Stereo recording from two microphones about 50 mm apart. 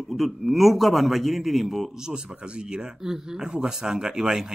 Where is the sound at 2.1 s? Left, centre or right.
Centre.